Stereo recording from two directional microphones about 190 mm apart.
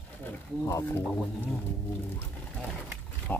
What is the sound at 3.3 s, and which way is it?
Speech, 10° left (ahead or behind).